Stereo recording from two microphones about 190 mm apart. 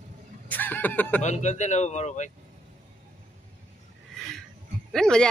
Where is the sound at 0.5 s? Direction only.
10° left (ahead or behind).